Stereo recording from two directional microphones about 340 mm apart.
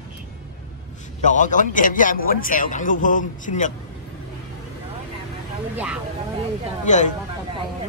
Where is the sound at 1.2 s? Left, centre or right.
Left.